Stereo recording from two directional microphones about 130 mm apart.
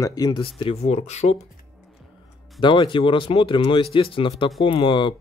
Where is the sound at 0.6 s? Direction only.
50° left (ahead or behind).